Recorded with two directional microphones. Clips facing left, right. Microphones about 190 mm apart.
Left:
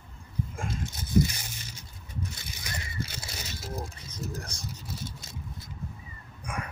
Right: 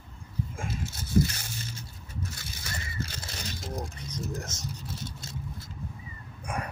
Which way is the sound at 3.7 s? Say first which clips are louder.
Right 1 dB; 20° right (ahead or behind).